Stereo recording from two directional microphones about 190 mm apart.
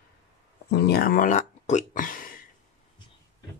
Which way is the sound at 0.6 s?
60° left (ahead or behind).